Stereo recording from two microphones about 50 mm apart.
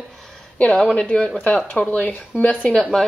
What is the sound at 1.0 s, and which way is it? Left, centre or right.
Speech, left.